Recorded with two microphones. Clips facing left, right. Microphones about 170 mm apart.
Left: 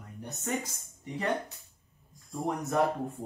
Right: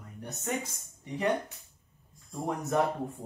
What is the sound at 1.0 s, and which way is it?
Speech, 20° right (ahead or behind).